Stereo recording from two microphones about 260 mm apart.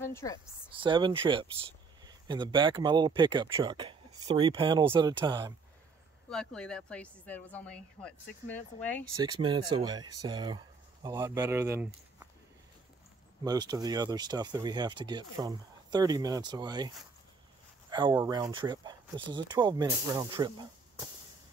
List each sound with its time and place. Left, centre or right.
0.0 s a woman's voice: centre
0.7 s speech: centre
6.2 s speech: centre
9.1 s speech: centre
13.4 s speech: centre